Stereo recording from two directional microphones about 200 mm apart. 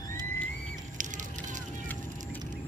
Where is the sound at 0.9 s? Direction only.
40° right (ahead or behind).